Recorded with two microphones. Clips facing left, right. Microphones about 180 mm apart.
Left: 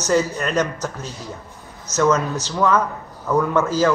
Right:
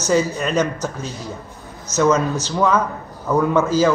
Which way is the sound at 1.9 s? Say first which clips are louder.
Right 2 dB; centre (ahead or behind).